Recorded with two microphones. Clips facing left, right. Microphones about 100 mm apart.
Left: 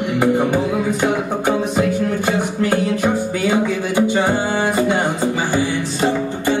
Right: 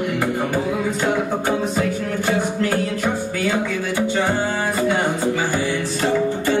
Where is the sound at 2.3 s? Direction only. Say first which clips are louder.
Right 1 dB; 20° left (ahead or behind).